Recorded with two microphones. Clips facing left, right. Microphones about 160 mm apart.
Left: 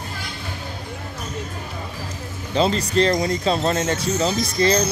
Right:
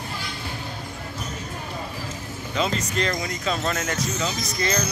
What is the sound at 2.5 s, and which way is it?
Speech, 30° left (ahead or behind).